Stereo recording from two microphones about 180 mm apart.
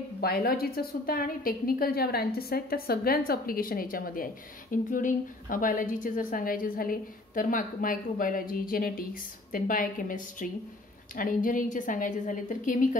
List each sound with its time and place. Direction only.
0.2 s a woman's voice: 60° left (ahead or behind)